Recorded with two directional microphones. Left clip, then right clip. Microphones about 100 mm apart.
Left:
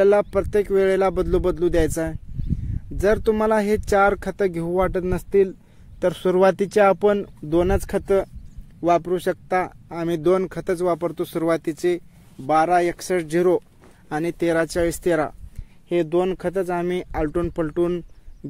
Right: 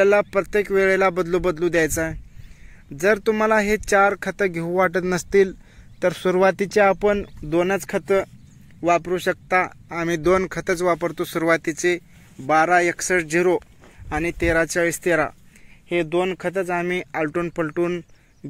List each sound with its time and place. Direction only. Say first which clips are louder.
0.0 s speech: even; 40° left (ahead or behind)
4.6 s speech: right 4 dB; 20° left (ahead or behind)
4.9 s speech: right 1 dB; centre (ahead or behind)
5.9 s speech: even; 25° left (ahead or behind)
7.1 s speech: left 1 dB; 50° left (ahead or behind); by 9.8 s 30° left (ahead or behind)
9.8 s speech: right 1 dB; 20° left (ahead or behind)
14.0 s speech: right 1 dB; 55° left (ahead or behind)
14.4 s speech: right 1 dB; 30° left (ahead or behind)
15.9 s speech: left 1 dB; 60° left (ahead or behind); by 18.0 s 40° left (ahead or behind)